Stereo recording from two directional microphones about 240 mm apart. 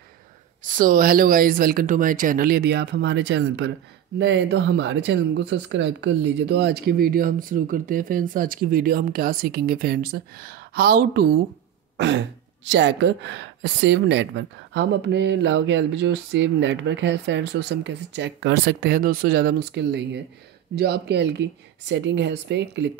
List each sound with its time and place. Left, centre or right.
0.7 s speech: right